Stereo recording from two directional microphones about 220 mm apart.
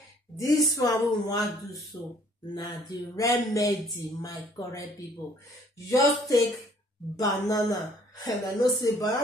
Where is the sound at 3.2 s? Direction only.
15° left (ahead or behind).